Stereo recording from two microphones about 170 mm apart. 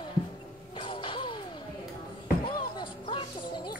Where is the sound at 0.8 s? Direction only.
30° left (ahead or behind).